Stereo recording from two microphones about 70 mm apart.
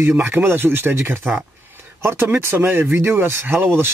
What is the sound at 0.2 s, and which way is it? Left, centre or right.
Speech, right.